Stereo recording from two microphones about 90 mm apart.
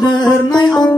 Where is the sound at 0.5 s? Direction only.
50° left (ahead or behind).